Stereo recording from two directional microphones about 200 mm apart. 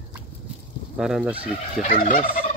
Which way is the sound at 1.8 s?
45° left (ahead or behind).